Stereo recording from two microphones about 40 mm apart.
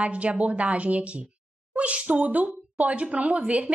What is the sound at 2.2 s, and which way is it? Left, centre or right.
A woman's voice, right.